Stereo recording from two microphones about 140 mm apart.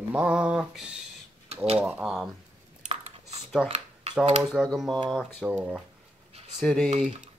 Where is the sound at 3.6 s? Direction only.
45° right (ahead or behind).